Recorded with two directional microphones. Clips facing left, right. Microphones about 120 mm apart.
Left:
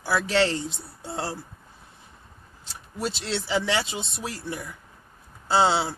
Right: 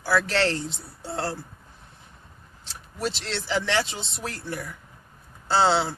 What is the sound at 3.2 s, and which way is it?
Speech, 10° left (ahead or behind).